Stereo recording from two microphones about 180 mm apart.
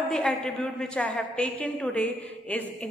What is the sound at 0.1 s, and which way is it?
A woman's voice, 5° left (ahead or behind).